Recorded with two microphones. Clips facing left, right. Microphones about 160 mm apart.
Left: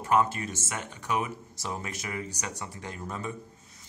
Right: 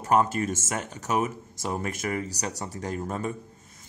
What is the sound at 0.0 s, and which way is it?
Speech, 40° right (ahead or behind).